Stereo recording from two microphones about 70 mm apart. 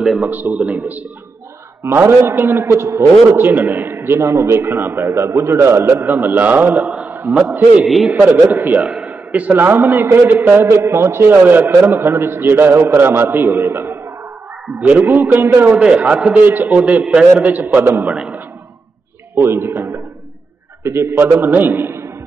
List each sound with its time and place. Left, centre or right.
0.2 s a man's voice: right
1.8 s a man's voice: right
3.3 s a man's voice: right
7.8 s a man's voice: centre
8.1 s a man's voice: right
14.7 s a man's voice: right
18.0 s a man's voice: centre
19.3 s a man's voice: right